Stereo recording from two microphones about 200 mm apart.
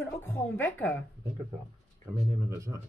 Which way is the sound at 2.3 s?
15° right (ahead or behind).